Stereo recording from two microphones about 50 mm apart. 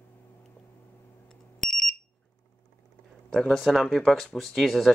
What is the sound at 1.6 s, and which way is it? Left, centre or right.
Alarm, centre.